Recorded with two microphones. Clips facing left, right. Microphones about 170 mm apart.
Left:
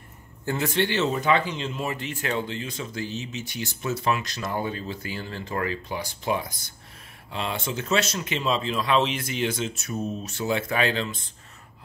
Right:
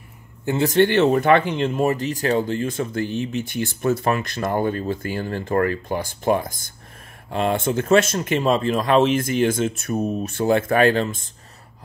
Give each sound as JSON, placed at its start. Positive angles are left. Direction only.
{"t": 0.7, "sound": "speech", "side_deg": -50}